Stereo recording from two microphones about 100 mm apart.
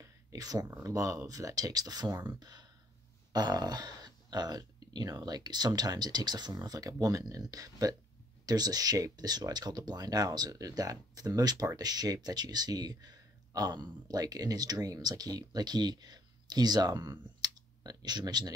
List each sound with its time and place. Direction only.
0.0 s a sound: 35° right (ahead or behind)
0.8 s speech: 35° right (ahead or behind)
17.4 s clicking: 45° right (ahead or behind)